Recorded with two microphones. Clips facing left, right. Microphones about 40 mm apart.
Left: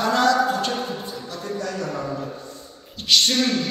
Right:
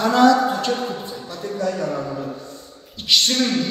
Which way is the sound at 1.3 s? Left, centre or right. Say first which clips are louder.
Right 5 dB; right.